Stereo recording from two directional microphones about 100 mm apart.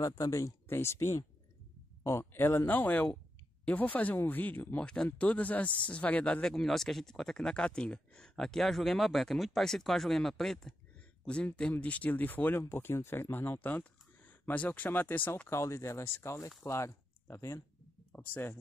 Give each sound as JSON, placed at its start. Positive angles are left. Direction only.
{"t": 0.0, "sound": "speech", "side_deg": 35}
{"t": 15.5, "sound": "speech", "side_deg": 30}